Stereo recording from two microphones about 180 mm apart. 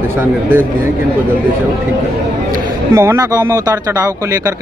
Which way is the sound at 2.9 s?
20° right (ahead or behind).